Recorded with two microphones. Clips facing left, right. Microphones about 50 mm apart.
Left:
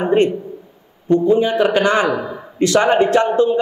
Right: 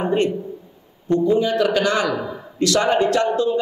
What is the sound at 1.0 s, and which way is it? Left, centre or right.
A man's voice, left.